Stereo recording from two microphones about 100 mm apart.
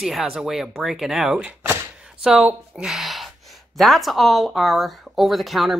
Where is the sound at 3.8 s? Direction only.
Centre (ahead or behind).